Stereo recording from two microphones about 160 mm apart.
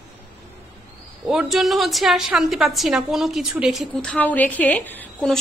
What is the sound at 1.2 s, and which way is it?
A woman's voice, centre (ahead or behind).